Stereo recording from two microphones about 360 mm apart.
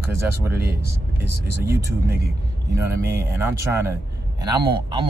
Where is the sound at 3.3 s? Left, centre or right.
Centre.